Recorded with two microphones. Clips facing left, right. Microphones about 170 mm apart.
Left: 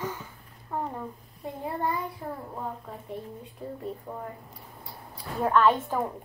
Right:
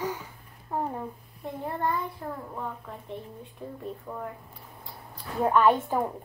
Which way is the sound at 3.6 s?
Centre (ahead or behind).